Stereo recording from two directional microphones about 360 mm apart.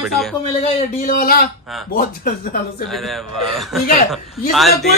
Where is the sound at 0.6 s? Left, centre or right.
Left.